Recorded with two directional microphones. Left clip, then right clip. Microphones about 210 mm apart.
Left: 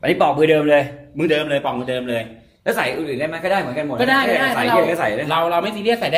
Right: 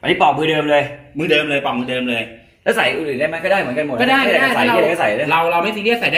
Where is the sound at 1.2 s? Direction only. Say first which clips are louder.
Right 2 dB; 45° left (ahead or behind).